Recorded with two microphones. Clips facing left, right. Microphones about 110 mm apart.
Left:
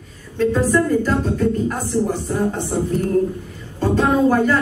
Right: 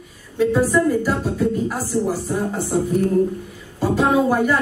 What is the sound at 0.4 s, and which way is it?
Speech, 10° right (ahead or behind).